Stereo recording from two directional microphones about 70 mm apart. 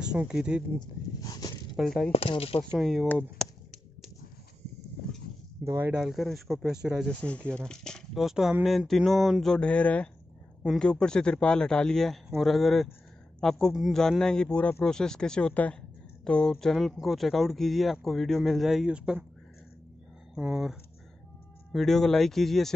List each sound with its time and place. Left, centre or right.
0.0 s speech: centre
0.7 s a sound: left
1.8 s speech: centre
3.2 s a sound: centre
5.6 s speech: right
5.9 s speech: centre
7.1 s speech: centre
8.2 s speech: centre
9.6 s a man's voice: centre
20.3 s speech: centre
21.7 s speech: centre